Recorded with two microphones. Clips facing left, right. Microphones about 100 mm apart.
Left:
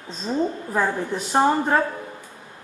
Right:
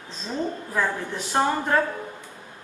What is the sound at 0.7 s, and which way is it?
A woman's voice, 30° left (ahead or behind).